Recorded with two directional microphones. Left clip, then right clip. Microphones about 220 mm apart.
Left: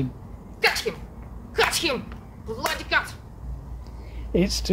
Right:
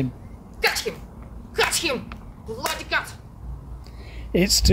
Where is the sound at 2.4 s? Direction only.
Centre (ahead or behind).